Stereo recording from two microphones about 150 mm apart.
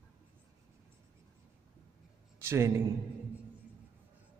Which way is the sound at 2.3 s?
15° right (ahead or behind).